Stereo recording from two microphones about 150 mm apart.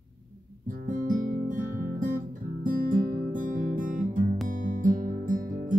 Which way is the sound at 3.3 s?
60° right (ahead or behind).